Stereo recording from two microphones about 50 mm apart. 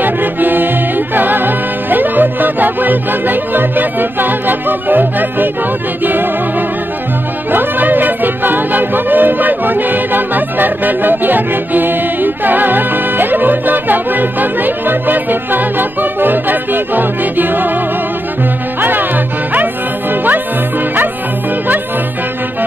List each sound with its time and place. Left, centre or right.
0.0 s music: right
7.5 s music: right
18.8 s music: right